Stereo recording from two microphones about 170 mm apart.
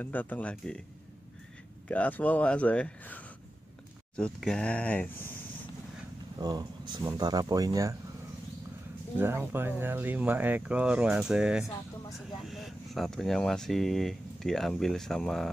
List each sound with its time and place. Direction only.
0.0 s speech: 10° left (ahead or behind)
1.9 s speech: 10° left (ahead or behind)
6.3 s speech: 25° right (ahead or behind)
9.2 s speech: 15° right (ahead or behind); by 15.5 s 5° left (ahead or behind)